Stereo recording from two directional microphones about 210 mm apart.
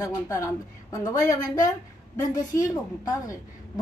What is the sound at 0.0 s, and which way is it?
A man's voice, 15° left (ahead or behind).